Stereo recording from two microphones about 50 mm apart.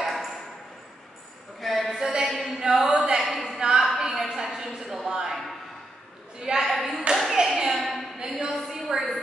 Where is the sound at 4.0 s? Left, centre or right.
Centre.